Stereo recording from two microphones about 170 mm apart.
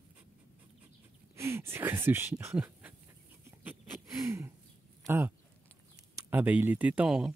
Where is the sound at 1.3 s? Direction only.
15° right (ahead or behind).